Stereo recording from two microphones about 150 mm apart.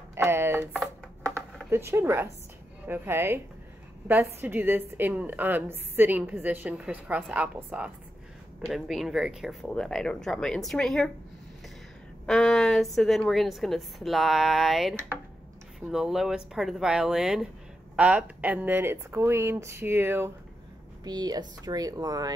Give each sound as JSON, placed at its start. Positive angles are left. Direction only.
{"t": 0.1, "sound": "a sound", "side_deg": -15}
{"t": 1.7, "sound": "a woman's voice", "side_deg": -15}
{"t": 12.3, "sound": "a woman's voice", "side_deg": 0}
{"t": 21.0, "sound": "speech", "side_deg": -25}